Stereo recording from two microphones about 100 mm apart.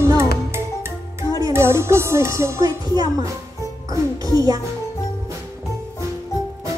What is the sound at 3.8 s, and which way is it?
Music, 35° right (ahead or behind).